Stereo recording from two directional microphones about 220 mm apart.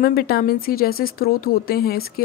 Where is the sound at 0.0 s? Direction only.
45° left (ahead or behind).